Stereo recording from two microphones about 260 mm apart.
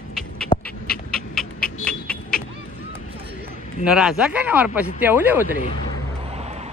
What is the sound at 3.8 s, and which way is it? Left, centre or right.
Speech, centre.